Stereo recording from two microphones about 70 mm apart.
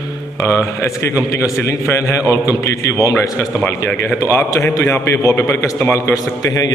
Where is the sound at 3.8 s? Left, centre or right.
Left.